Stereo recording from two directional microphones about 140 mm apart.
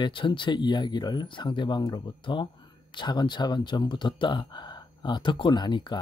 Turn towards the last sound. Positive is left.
turn(degrees=30)  # may be behind; listen again after turning